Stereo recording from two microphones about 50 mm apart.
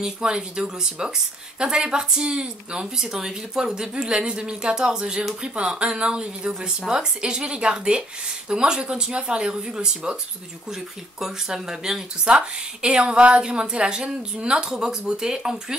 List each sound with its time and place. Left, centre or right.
0.0 s speech: centre